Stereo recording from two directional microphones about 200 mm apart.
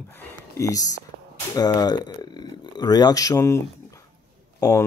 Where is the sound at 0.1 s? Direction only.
15° left (ahead or behind).